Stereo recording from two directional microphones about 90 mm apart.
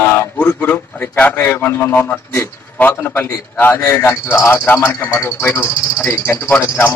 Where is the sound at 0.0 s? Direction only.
25° left (ahead or behind).